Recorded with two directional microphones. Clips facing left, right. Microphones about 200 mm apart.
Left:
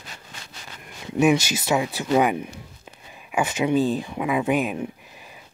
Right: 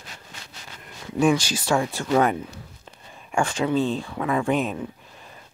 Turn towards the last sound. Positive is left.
turn(degrees=10)  # may be behind; listen again after turning